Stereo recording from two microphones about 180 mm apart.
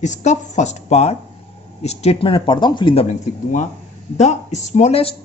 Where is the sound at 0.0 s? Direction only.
40° left (ahead or behind).